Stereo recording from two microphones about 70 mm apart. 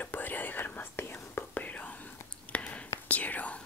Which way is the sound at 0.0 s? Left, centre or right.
Left.